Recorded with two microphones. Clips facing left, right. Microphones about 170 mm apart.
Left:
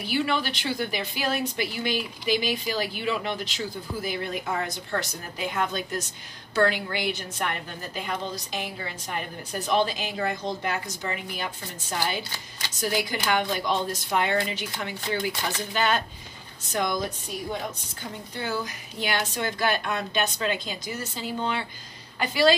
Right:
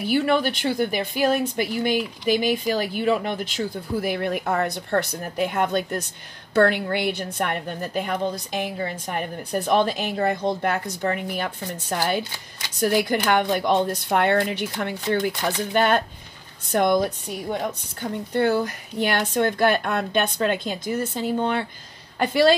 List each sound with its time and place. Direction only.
0.0 s a woman's voice: 50° right (ahead or behind)